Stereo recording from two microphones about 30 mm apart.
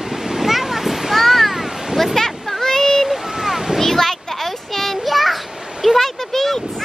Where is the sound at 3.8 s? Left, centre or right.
Centre.